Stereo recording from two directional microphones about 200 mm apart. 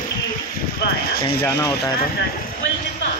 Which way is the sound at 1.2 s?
20° left (ahead or behind).